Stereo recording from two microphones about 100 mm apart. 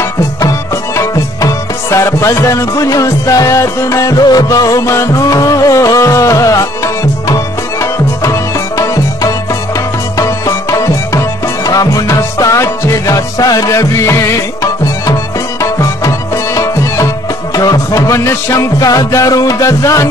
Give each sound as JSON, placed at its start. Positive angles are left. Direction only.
{"t": 0.0, "sound": "music", "side_deg": 30}